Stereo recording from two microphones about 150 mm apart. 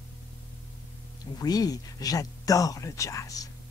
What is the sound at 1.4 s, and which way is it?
Speech, 25° left (ahead or behind).